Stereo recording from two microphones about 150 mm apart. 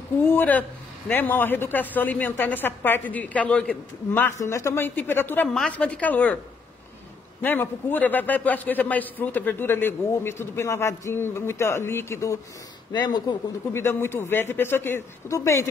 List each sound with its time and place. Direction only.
0.2 s a man's voice: 15° left (ahead or behind)
7.4 s a man's voice: 10° left (ahead or behind); by 13.4 s 30° left (ahead or behind)
13.7 s a man's voice: 15° left (ahead or behind)